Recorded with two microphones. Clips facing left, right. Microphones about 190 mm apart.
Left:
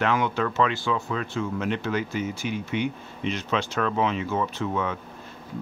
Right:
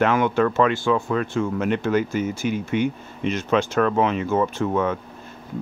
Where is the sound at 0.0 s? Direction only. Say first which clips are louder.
Right 5 dB; 50° right (ahead or behind).